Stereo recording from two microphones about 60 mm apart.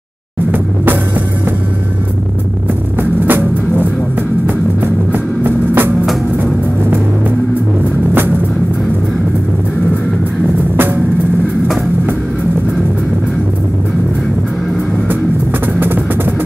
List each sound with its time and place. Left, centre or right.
3.0 s music: right
5.1 s music: right